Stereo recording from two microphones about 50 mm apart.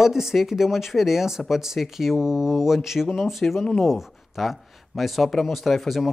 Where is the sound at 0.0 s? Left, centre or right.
Centre.